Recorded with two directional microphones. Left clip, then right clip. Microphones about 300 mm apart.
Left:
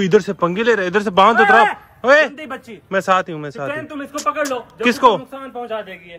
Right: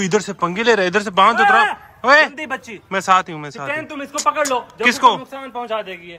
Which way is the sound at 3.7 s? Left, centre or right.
Right.